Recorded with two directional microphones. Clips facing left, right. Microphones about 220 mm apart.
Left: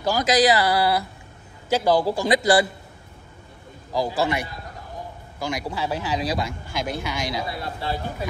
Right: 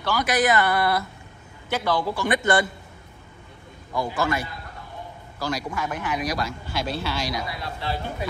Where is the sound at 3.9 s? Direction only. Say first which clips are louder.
Left 3 dB; 35° left (ahead or behind).